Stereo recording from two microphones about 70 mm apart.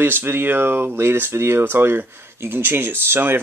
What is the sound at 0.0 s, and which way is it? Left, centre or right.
Speech, right.